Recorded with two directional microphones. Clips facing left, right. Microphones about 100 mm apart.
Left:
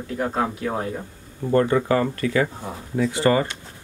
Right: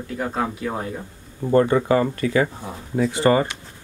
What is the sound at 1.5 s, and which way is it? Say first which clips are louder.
Speech: right 2 dB; 20° right (ahead or behind).